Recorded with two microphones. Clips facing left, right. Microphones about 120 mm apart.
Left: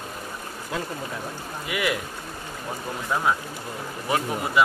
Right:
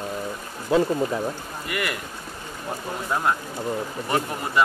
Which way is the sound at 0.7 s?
30° right (ahead or behind).